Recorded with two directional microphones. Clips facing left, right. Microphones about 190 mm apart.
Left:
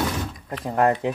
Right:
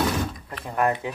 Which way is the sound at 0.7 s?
65° left (ahead or behind).